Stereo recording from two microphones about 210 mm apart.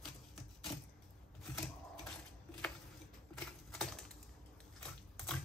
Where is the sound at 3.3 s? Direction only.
5° left (ahead or behind).